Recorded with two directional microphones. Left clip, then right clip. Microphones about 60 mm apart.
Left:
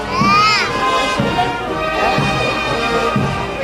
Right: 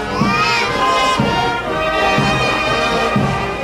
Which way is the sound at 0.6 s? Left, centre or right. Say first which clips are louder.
Right 1 dB; centre.